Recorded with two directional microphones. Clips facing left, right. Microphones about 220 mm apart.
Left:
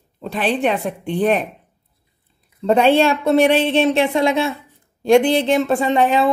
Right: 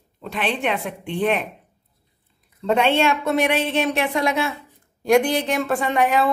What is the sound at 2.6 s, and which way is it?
Speech, 35° left (ahead or behind).